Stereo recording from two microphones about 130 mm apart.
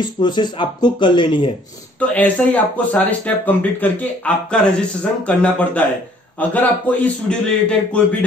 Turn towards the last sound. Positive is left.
turn(degrees=10)  # may be behind; listen again after turning